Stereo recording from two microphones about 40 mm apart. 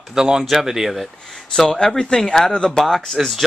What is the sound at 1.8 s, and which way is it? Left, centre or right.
Speech, centre.